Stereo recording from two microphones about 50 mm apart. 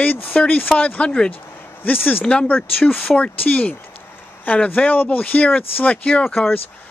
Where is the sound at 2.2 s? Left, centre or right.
Left.